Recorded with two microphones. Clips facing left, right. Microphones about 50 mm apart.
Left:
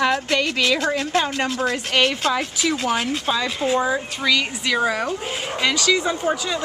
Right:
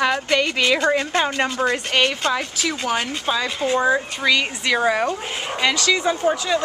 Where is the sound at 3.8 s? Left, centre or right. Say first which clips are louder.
Right 3 dB; centre.